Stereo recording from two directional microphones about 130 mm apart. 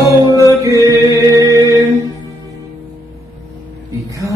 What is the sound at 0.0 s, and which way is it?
Music, 25° right (ahead or behind).